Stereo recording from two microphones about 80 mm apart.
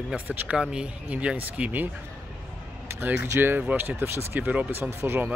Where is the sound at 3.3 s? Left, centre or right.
Right.